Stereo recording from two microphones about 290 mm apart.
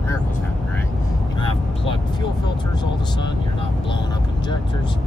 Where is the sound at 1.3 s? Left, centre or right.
Centre.